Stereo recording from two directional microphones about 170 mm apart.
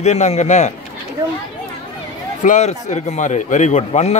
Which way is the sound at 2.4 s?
45° left (ahead or behind).